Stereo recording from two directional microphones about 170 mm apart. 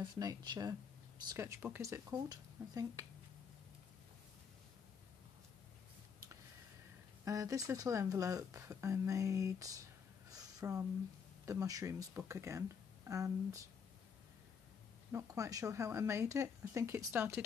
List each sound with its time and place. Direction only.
0.0 s speech: 25° right (ahead or behind)
7.2 s speech: 20° right (ahead or behind)
10.3 s a sound: 15° right (ahead or behind)
11.4 s speech: 20° right (ahead or behind)
15.1 s speech: 20° right (ahead or behind)